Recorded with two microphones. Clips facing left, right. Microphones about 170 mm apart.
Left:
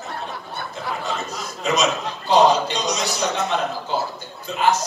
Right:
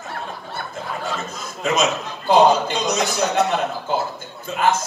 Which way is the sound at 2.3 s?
50° right (ahead or behind).